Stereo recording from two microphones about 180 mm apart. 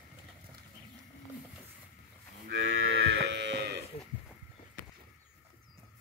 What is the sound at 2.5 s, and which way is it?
Moo, 90° right.